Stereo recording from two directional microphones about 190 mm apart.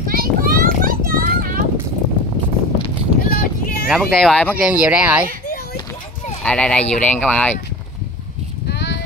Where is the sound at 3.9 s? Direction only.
Centre (ahead or behind).